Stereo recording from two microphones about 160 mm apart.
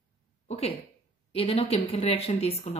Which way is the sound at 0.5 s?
40° left (ahead or behind).